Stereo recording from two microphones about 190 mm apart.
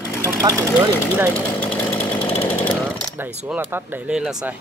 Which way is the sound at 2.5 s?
10° left (ahead or behind).